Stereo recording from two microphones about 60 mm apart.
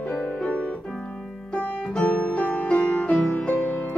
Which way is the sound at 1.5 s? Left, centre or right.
Centre.